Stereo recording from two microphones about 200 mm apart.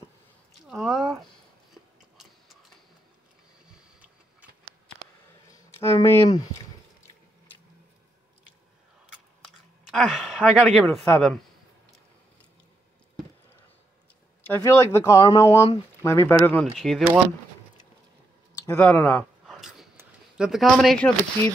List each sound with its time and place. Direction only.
0.5 s speech: centre (ahead or behind)
1.7 s tick-tock: centre (ahead or behind)
3.7 s boat: 5° right (ahead or behind)
5.5 s a sound: 15° left (ahead or behind)
9.8 s speech: centre (ahead or behind)
14.5 s speech: 10° left (ahead or behind)
16.7 s speech: centre (ahead or behind)
18.5 s speech: 10° left (ahead or behind)
19.4 s a sound: centre (ahead or behind)
20.0 s speech: 5° right (ahead or behind)